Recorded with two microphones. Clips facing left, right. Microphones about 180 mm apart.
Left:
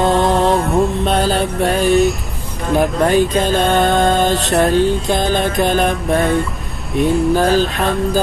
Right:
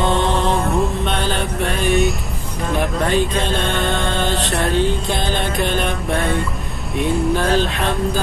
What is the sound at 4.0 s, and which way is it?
Music, 40° left (ahead or behind).